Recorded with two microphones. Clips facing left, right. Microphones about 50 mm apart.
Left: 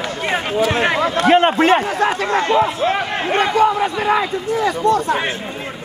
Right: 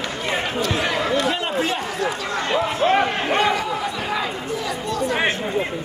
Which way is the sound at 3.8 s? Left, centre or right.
Left.